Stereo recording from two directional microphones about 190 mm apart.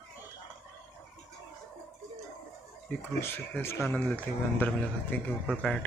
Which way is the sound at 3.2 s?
15° left (ahead or behind).